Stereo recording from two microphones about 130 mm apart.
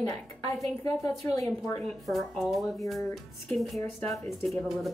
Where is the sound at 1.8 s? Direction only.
Centre (ahead or behind).